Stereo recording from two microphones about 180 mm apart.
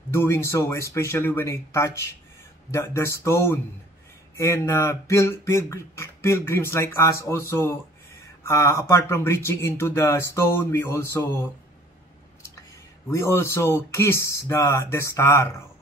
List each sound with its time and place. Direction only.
0.1 s speech: 15° left (ahead or behind)
13.1 s speech: 15° left (ahead or behind)